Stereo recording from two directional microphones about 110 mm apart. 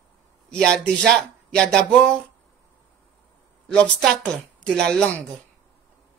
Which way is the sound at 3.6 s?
5° left (ahead or behind).